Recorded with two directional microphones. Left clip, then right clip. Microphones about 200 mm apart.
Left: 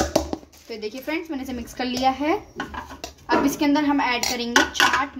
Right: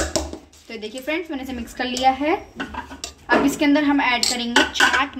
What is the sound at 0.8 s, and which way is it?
A woman's voice, 25° left (ahead or behind).